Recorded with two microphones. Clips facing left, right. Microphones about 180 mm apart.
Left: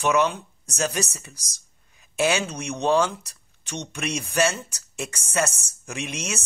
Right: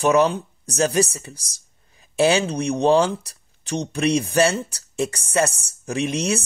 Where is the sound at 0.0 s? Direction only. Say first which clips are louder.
Right 5 dB; 35° right (ahead or behind).